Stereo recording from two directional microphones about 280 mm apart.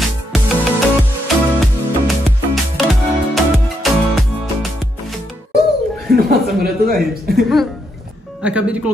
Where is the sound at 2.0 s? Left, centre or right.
Centre.